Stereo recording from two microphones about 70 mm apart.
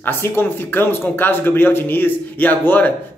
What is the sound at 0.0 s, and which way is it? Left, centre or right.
A man's voice, left.